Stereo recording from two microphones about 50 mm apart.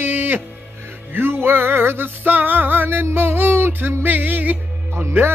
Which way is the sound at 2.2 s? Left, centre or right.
Right.